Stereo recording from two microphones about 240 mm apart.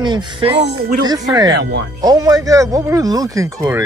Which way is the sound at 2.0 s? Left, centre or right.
Centre.